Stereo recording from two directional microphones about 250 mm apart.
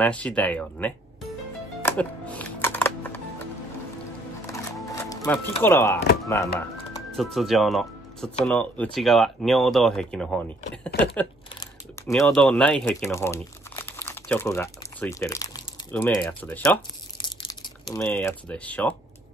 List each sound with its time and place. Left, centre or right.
0.0 s speech: centre
1.8 s music: centre
4.5 s music: centre
5.6 s speech: centre
7.1 s speech: centre
10.9 s a sound: left
12.3 s speech: centre
17.2 s crushing: centre
17.9 s speech: centre